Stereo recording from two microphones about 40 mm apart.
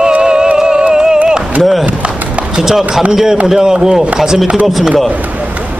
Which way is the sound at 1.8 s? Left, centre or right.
Right.